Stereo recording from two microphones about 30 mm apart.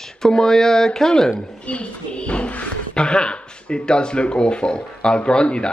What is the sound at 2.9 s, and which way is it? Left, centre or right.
Speech, left.